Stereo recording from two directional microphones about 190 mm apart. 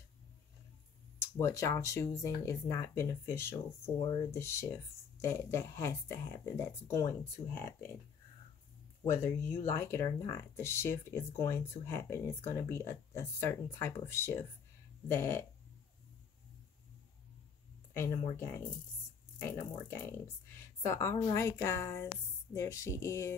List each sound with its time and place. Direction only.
1.4 s speech: 15° left (ahead or behind)
9.0 s speech: 15° left (ahead or behind)
18.3 s speech: 15° left (ahead or behind)